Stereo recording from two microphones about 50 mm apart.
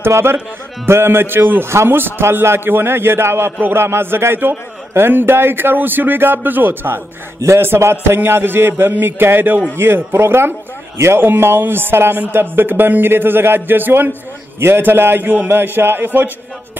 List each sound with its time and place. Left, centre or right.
0.1 s a man's voice: right
7.3 s a man's voice: right
14.6 s a man's voice: right